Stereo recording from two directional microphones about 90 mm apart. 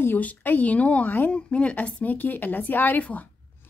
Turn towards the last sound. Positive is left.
turn(degrees=15)  # may be behind; listen again after turning